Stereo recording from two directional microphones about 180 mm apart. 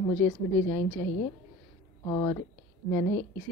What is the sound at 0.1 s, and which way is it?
A woman's voice, 10° left (ahead or behind).